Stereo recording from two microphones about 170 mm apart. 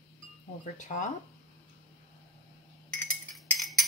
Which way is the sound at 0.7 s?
50° left (ahead or behind).